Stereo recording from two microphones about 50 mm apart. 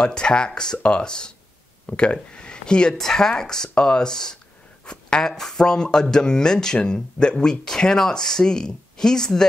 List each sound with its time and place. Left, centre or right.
0.0 s speech: centre
4.8 s a sound: centre
5.3 s speech: centre